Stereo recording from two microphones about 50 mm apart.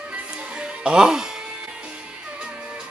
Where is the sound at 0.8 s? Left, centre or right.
Centre.